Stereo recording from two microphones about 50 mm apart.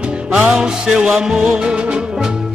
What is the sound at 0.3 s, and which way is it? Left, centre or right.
Music, centre.